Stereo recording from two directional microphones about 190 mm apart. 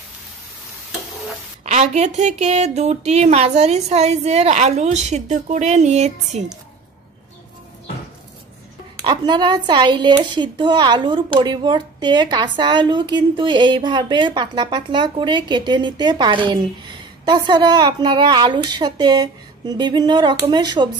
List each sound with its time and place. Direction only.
1.6 s speech: 40° right (ahead or behind)
9.0 s speech: 25° right (ahead or behind)